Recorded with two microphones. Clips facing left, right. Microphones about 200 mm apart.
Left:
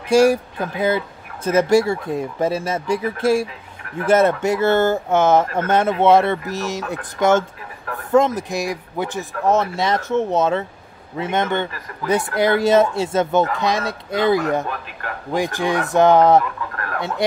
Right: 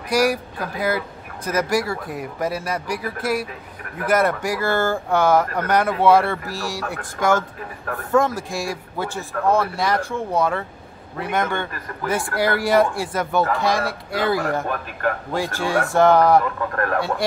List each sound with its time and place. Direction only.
0.1 s speech: 25° left (ahead or behind)
16.7 s speech: 45° right (ahead or behind)